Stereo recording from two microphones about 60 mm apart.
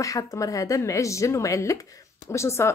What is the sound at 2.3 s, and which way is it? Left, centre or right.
Speech, left.